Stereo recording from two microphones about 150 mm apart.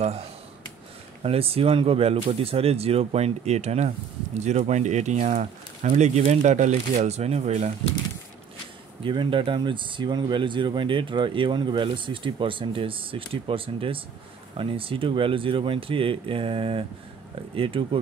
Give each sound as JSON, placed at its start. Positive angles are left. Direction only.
{"t": 1.2, "sound": "speech", "side_deg": -40}
{"t": 9.0, "sound": "speech", "side_deg": -35}